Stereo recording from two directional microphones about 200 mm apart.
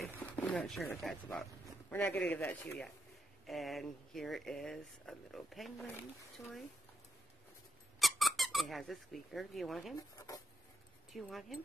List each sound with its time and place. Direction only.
0.2 s speech: 10° left (ahead or behind)
8.0 s speech: centre (ahead or behind)
9.9 s speech: 15° left (ahead or behind)
11.1 s speech: centre (ahead or behind)